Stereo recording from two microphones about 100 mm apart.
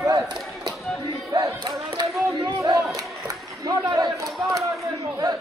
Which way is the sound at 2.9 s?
40° right (ahead or behind).